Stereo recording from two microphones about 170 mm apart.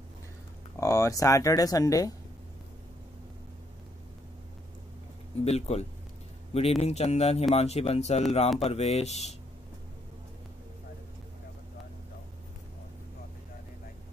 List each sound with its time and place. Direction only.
0.7 s speech: 20° left (ahead or behind)
5.4 s speech: 40° left (ahead or behind)